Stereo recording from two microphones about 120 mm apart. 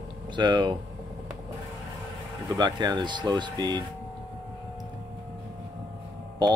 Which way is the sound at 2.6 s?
35° right (ahead or behind).